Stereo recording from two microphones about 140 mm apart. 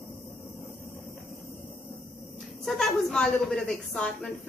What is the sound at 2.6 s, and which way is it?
A woman's voice, centre (ahead or behind).